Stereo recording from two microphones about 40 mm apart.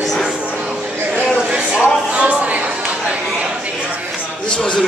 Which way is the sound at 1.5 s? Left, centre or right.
Right.